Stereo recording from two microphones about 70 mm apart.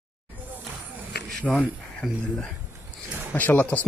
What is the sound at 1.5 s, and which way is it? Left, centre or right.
Speech, centre.